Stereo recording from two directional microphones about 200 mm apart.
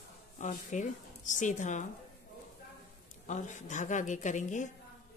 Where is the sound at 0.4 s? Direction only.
40° left (ahead or behind).